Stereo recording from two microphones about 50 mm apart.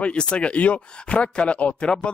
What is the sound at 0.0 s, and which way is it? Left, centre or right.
Speech, left.